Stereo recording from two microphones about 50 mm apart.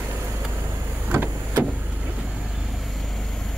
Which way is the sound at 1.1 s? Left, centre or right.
Right.